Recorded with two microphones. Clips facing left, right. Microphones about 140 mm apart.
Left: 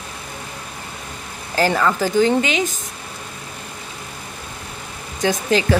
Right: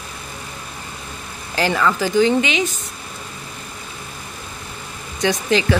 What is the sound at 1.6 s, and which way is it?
Speech, 40° left (ahead or behind).